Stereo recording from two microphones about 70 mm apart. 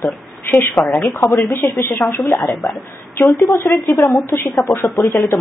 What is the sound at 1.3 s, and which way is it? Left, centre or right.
Speech, left.